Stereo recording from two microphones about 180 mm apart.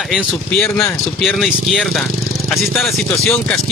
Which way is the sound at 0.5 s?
10° left (ahead or behind).